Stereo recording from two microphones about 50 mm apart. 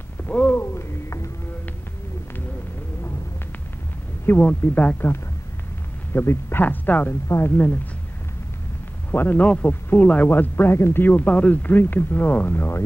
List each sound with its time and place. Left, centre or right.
0.2 s a sound: left
0.6 s a sound: left
4.3 s speech: left
6.1 s speech: left
6.6 s speech: left
9.1 s speech: left
9.4 s speech: left
11.0 s speech: left
12.4 s speech: left